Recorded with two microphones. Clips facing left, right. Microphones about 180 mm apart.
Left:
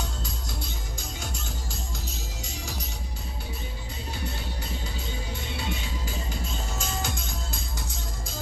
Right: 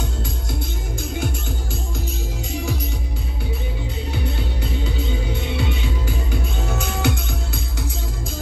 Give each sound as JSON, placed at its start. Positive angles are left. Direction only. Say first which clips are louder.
{"t": 2.5, "sound": "music", "louder": "right 13 dB", "side_deg": -60}
{"t": 5.3, "sound": "music", "louder": "right 8 dB", "side_deg": -65}